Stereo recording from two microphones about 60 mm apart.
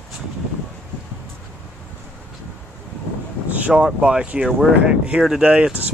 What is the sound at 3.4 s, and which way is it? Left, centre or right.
Wind, right.